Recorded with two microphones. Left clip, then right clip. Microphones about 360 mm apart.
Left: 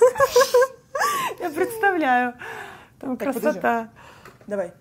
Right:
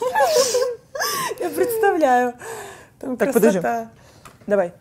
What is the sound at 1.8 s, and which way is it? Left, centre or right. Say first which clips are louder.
Gasp: right 3 dB; centre.